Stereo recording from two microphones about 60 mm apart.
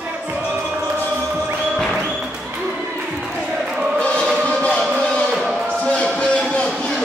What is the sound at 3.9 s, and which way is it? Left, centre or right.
Choir, centre.